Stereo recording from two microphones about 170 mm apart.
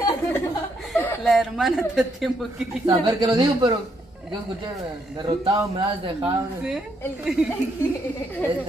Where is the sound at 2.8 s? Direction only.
30° right (ahead or behind).